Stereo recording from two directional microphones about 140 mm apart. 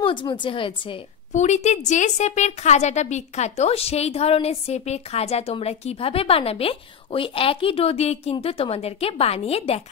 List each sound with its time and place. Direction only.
0.0 s speech: 35° left (ahead or behind)
1.3 s a woman's voice: 55° left (ahead or behind)